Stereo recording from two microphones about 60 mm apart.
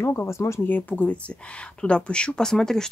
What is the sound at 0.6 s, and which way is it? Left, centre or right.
Speech, left.